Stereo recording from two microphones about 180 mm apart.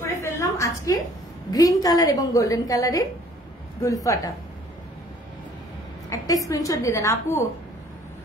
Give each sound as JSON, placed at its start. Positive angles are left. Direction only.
{"t": 0.0, "sound": "a sound", "side_deg": 15}
{"t": 1.5, "sound": "a woman's voice", "side_deg": 20}
{"t": 6.0, "sound": "a woman's voice", "side_deg": 20}